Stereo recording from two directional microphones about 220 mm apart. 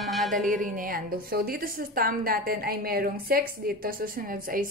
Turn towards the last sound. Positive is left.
turn(degrees=-40)  # may be behind; listen again after turning